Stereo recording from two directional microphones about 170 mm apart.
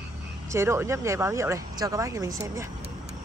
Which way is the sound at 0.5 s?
15° right (ahead or behind).